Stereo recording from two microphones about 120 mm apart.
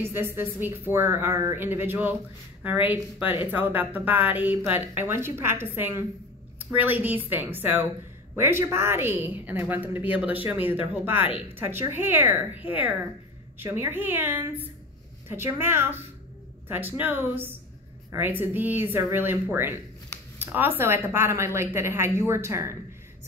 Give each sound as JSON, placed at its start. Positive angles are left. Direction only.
{"t": 0.0, "sound": "a woman's voice", "side_deg": -20}